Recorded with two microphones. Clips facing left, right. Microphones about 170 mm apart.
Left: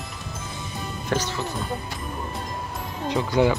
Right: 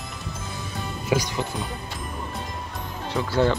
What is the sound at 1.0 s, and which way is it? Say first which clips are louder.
Speech: right 2 dB; 10° right (ahead or behind).